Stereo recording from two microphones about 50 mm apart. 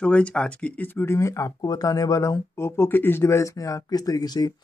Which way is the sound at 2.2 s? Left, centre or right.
Left.